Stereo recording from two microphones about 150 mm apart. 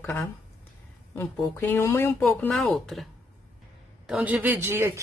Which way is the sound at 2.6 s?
Centre (ahead or behind).